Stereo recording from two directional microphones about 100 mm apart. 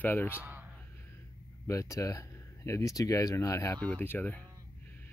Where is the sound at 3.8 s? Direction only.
20° left (ahead or behind).